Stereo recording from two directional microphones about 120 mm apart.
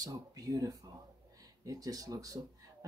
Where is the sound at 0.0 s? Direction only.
30° right (ahead or behind).